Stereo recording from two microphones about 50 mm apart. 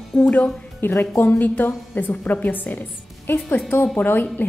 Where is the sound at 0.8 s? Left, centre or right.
Left.